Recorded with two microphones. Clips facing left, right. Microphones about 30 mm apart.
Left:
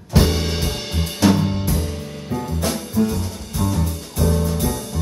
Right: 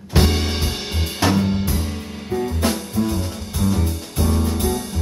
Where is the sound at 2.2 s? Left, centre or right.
Right.